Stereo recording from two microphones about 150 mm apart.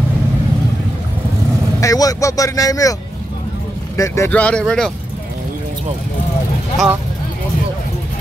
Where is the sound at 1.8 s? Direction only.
25° left (ahead or behind).